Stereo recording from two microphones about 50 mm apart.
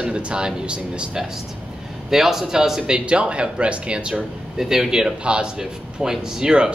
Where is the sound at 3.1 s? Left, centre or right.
Right.